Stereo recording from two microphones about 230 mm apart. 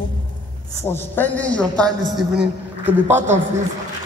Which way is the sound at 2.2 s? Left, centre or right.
Centre.